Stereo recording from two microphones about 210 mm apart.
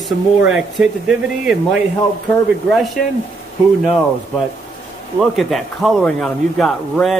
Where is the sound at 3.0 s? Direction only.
45° left (ahead or behind).